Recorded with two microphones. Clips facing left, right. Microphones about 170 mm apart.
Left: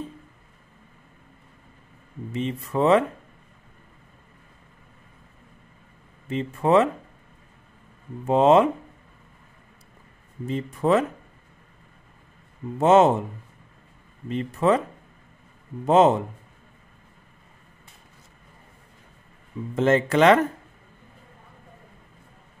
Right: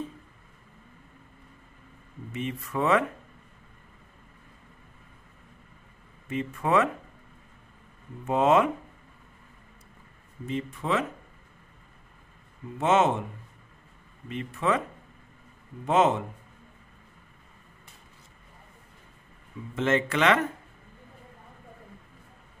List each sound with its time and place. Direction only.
2.3 s speech: 30° left (ahead or behind)
6.2 s speech: 30° left (ahead or behind)
8.3 s speech: 30° left (ahead or behind)
10.4 s speech: 40° left (ahead or behind)
12.7 s speech: 35° left (ahead or behind)
14.3 s speech: 35° left (ahead or behind)
15.8 s speech: 35° left (ahead or behind)
19.7 s speech: 40° left (ahead or behind)